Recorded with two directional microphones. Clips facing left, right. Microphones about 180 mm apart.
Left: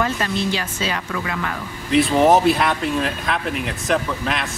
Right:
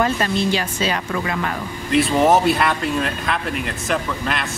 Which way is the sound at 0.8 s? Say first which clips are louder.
Right 3 dB; 35° right (ahead or behind).